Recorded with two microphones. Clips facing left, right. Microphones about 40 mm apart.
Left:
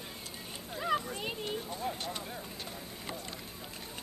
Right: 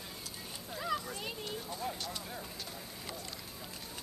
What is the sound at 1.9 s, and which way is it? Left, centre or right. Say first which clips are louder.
Clip-clop: left 2 dB; left.